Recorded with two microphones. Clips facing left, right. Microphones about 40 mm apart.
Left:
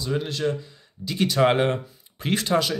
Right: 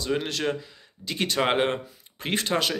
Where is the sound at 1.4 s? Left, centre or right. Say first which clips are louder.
Left 4 dB; right.